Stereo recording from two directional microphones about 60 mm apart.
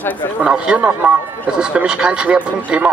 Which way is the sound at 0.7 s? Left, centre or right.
Right.